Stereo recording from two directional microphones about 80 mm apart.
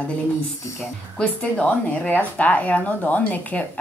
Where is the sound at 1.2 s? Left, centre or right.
Centre.